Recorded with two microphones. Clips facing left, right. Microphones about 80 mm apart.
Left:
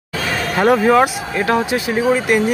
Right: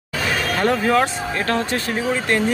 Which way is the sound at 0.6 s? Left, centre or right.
Centre.